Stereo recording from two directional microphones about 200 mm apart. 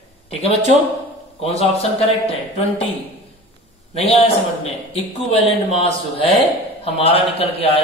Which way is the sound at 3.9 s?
30° left (ahead or behind).